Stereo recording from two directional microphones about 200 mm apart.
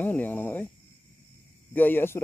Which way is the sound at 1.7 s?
10° left (ahead or behind).